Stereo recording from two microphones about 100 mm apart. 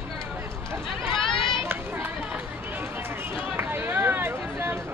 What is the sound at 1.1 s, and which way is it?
Run, 60° left (ahead or behind).